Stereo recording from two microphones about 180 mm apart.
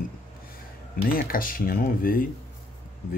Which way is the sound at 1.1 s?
55° left (ahead or behind).